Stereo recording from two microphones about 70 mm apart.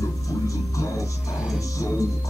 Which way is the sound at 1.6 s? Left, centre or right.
Left.